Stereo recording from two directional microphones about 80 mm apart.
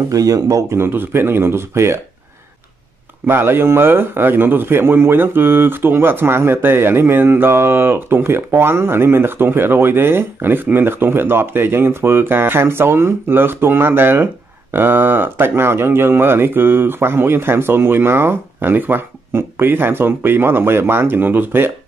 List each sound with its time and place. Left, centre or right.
0.1 s speech: right
3.3 s a man's voice: right